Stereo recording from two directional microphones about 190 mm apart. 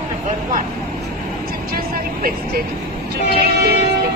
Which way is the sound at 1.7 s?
50° right (ahead or behind).